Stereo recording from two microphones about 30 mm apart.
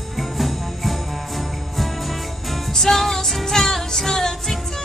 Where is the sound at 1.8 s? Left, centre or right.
Centre.